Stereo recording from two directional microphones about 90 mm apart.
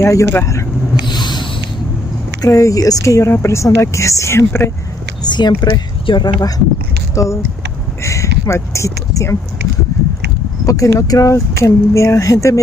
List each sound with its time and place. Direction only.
0.0 s speech: 30° left (ahead or behind)
1.0 s a sound: 55° left (ahead or behind)
2.4 s speech: 40° left (ahead or behind)
5.2 s speech: 55° left (ahead or behind)
7.2 s speech: 35° left (ahead or behind)
9.9 s a sound: 35° left (ahead or behind)
10.6 s speech: 40° left (ahead or behind)